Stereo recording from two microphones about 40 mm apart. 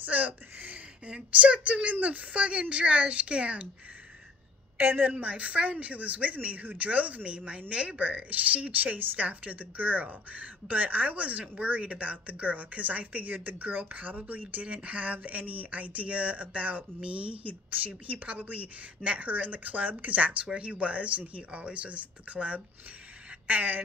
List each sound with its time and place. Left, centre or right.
0.0 s a sound: right
1.1 s speech: right
4.7 s a woman's voice: right
5.1 s a woman's voice: right
23.4 s speech: right